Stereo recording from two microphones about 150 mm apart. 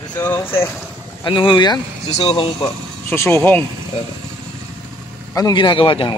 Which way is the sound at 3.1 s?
15° left (ahead or behind).